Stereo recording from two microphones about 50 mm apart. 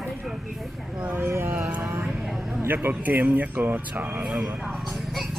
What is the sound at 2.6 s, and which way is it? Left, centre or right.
Speech, right.